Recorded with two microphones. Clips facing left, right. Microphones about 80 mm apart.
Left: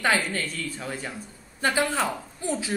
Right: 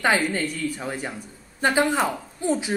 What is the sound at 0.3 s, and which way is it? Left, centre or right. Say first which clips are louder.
Speech: right 5 dB; centre.